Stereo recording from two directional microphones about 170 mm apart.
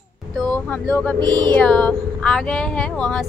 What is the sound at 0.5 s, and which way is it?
Speech, 10° left (ahead or behind).